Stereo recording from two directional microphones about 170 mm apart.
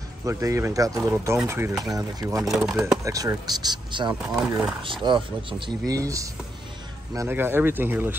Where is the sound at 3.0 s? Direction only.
20° right (ahead or behind).